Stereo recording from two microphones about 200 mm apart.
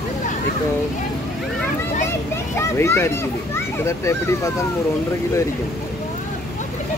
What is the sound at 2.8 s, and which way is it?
Speech, 15° left (ahead or behind).